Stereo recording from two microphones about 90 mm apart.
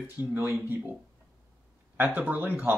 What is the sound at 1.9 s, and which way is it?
Speech, 20° right (ahead or behind).